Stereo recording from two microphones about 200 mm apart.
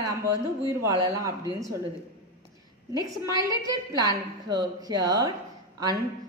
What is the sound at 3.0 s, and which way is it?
A woman's voice, 20° right (ahead or behind).